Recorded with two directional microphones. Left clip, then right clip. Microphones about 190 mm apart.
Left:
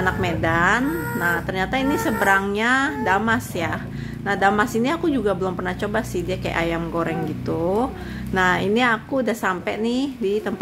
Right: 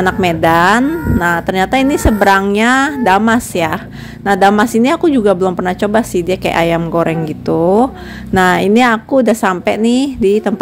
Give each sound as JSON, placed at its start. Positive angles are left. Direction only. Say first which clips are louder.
{"t": 0.0, "sound": "speech", "louder": "right 10 dB", "side_deg": -40}